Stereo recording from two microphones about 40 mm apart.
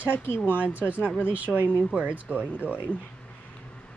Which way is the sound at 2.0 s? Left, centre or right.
Right.